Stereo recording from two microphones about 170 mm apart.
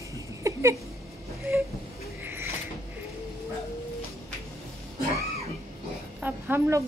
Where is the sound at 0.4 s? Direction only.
15° right (ahead or behind).